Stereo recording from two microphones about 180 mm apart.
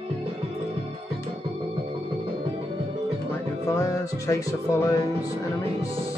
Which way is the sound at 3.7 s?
15° left (ahead or behind).